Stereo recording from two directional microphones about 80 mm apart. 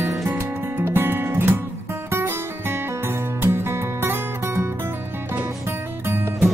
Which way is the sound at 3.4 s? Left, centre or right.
Right.